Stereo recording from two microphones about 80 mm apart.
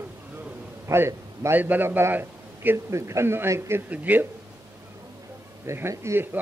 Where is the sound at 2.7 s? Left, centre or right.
Right.